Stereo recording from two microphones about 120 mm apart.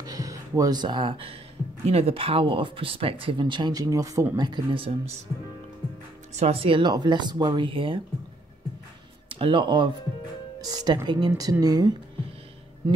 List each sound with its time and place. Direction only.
0.0 s speech: 30° right (ahead or behind)
4.4 s speech: 40° right (ahead or behind)
6.3 s speech: 60° right (ahead or behind)
9.3 s speech: 45° right (ahead or behind)